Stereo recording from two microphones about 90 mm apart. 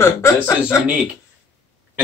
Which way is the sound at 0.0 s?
30° left (ahead or behind).